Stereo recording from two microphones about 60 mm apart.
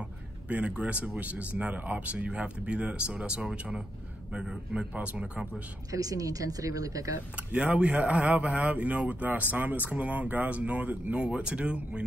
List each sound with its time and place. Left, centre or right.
0.5 s speech: right
5.9 s a woman's voice: right
7.3 s speech: right